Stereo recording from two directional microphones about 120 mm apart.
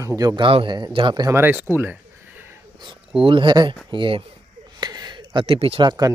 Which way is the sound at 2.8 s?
45° right (ahead or behind).